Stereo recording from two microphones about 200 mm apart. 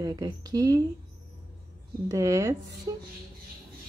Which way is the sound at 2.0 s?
15° right (ahead or behind).